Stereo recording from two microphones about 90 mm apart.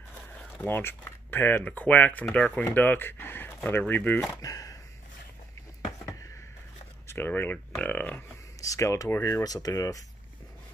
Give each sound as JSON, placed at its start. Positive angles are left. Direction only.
{"t": 0.3, "sound": "speech", "side_deg": 20}
{"t": 4.4, "sound": "speech", "side_deg": 40}
{"t": 7.1, "sound": "speech", "side_deg": 25}
{"t": 8.5, "sound": "speech", "side_deg": 35}